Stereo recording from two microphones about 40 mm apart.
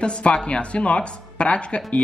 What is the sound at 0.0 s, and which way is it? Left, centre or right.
Speech, left.